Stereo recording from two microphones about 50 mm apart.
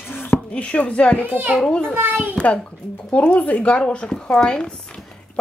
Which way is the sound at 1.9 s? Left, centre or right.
Right.